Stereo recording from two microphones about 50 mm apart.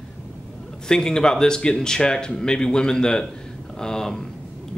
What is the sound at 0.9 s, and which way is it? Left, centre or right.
Speech, centre.